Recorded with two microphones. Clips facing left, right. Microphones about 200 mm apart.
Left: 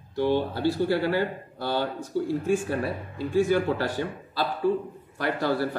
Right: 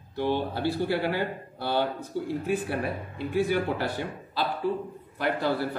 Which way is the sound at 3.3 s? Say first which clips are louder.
Left 3 dB; 15° right (ahead or behind).